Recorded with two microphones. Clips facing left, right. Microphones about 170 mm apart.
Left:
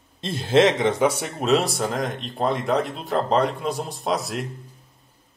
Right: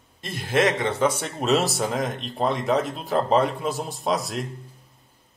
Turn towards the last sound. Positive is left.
turn(degrees=0)  # may be behind; listen again after turning